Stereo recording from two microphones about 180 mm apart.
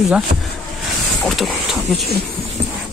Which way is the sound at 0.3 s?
40° right (ahead or behind).